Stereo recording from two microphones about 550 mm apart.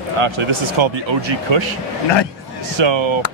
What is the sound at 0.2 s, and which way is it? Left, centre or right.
Speech, right.